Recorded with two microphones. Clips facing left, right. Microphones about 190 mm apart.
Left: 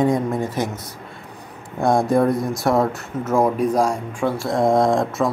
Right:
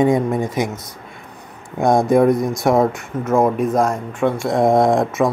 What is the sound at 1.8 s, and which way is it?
Speech, 20° right (ahead or behind).